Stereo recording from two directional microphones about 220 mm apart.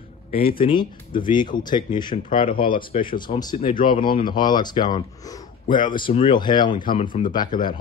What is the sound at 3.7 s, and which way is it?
Speech, 40° left (ahead or behind).